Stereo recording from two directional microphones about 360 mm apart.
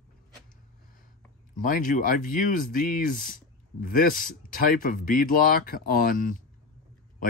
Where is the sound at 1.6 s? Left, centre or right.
Left.